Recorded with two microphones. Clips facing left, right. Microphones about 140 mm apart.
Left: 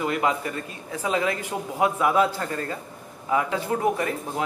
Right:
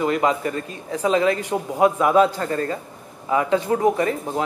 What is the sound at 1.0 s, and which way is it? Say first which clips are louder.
Speech: right 6 dB; 25° right (ahead or behind).